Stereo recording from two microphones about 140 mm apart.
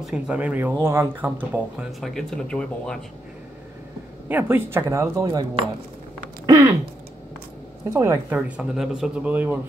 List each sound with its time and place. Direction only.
0.0 s speech: 5° right (ahead or behind)
1.9 s speech: centre (ahead or behind)
4.3 s speech: 15° right (ahead or behind)
6.4 s a sound: 25° right (ahead or behind)
7.9 s speech: 20° right (ahead or behind)
8.4 s speech: 5° right (ahead or behind)